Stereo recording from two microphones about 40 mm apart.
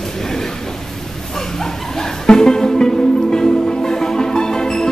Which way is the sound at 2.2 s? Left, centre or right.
Centre.